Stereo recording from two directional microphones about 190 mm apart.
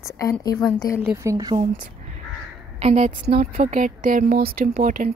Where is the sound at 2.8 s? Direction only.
35° right (ahead or behind).